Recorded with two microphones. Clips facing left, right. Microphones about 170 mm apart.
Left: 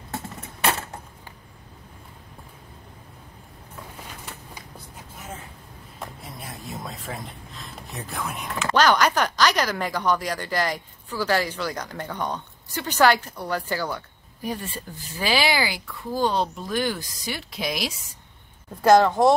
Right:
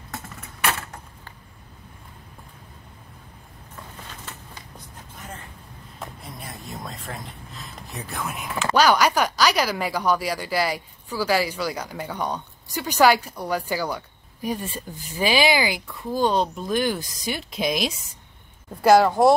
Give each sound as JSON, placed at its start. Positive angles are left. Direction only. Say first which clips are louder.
{"t": 4.3, "sound": "a sound", "louder": "even", "side_deg": 10}
{"t": 5.9, "sound": "speech", "louder": "even", "side_deg": 0}
{"t": 18.8, "sound": "speech", "louder": "right 1 dB", "side_deg": -10}